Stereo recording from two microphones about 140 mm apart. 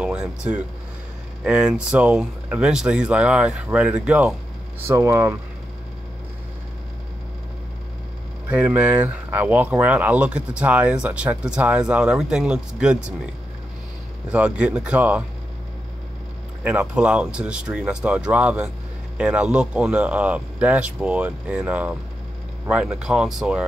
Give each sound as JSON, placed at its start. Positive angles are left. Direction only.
{"t": 0.0, "sound": "speech", "side_deg": -5}
{"t": 4.8, "sound": "speech", "side_deg": -15}
{"t": 8.5, "sound": "speech", "side_deg": -10}
{"t": 14.3, "sound": "speech", "side_deg": -10}
{"t": 16.6, "sound": "speech", "side_deg": -10}